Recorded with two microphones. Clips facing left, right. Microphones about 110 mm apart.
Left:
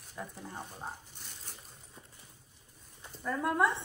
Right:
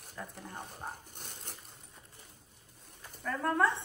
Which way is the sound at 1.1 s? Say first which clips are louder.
Right 3 dB; 55° right (ahead or behind).